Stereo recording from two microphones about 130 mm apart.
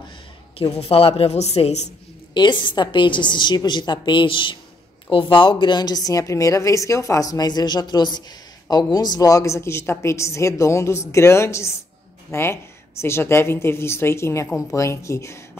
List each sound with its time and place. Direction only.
0.7 s speech: 45° left (ahead or behind)
2.3 s a woman's voice: 35° left (ahead or behind)